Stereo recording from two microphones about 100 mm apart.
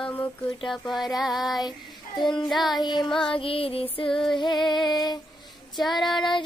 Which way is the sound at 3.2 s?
65° left (ahead or behind).